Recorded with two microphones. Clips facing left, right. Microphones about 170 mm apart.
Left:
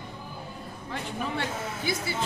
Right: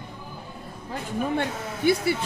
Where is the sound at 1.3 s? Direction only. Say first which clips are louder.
Right 4 dB; 60° right (ahead or behind).